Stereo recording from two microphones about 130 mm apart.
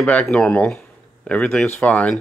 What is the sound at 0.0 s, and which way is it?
Speech, 10° left (ahead or behind).